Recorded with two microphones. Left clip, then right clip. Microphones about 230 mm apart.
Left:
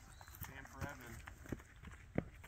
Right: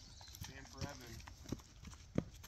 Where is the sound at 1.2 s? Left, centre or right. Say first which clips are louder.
Even; right.